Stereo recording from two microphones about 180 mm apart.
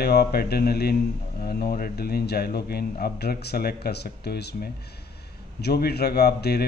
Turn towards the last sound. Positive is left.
turn(degrees=65)  # may be behind; listen again after turning